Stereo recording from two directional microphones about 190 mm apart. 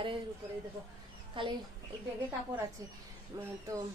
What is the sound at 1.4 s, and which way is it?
Speech, 25° right (ahead or behind).